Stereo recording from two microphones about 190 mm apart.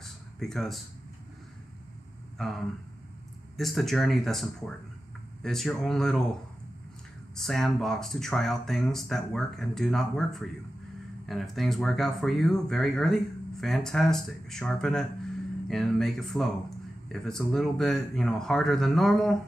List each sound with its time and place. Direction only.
0.0 s a sound: centre (ahead or behind)
2.3 s speech: centre (ahead or behind)
7.3 s speech: centre (ahead or behind)